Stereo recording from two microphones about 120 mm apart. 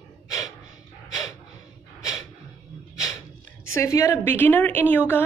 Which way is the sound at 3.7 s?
25° left (ahead or behind).